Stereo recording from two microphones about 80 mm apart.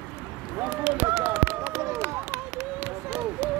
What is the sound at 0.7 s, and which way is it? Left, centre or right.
Run, right.